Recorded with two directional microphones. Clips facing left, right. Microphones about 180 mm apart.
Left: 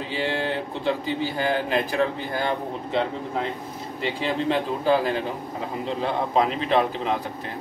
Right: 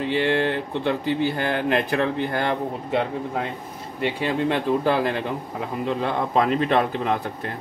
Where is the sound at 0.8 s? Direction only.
60° right (ahead or behind).